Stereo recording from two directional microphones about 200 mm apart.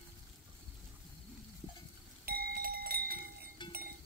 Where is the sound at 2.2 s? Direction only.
50° right (ahead or behind).